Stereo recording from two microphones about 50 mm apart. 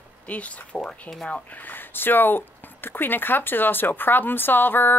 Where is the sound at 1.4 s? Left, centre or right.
Left.